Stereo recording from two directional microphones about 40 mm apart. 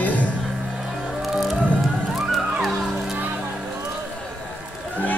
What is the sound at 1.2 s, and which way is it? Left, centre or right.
Music, centre.